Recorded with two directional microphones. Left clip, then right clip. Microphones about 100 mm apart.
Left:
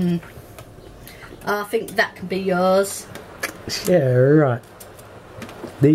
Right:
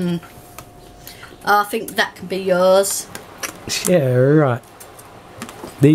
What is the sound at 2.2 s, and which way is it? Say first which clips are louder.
Speech: right 4 dB; 30° right (ahead or behind).